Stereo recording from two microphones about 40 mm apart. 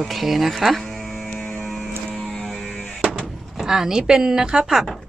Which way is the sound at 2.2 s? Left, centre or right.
Centre.